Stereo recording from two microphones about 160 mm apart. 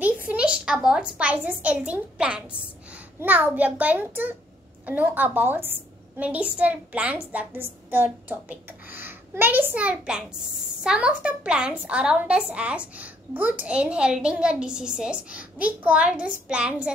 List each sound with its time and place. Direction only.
0.3 s a woman's voice: 5° right (ahead or behind)